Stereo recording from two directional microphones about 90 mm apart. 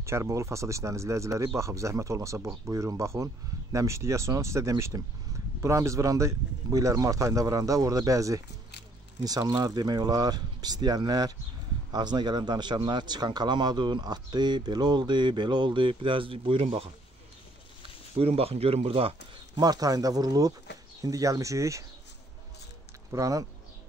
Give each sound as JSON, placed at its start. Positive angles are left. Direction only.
{"t": 0.0, "sound": "speech", "side_deg": -35}
{"t": 18.1, "sound": "speech", "side_deg": -90}
{"t": 19.5, "sound": "speech", "side_deg": -45}
{"t": 23.1, "sound": "speech", "side_deg": -40}